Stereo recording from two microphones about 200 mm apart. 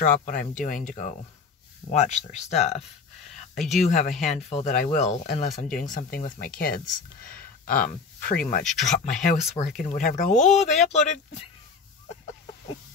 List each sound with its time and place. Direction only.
0.0 s speech: 40° left (ahead or behind)